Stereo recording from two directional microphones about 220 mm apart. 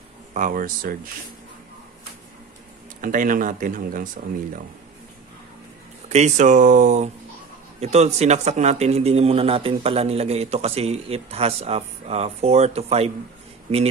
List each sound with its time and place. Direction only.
0.3 s speech: 35° right (ahead or behind)
3.0 s speech: 35° right (ahead or behind)
6.0 s a man's voice: 30° right (ahead or behind)